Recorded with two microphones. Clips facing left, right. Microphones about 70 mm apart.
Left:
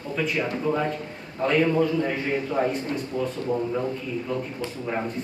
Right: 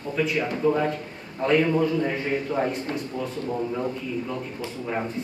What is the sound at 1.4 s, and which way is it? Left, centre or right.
A man's voice, centre.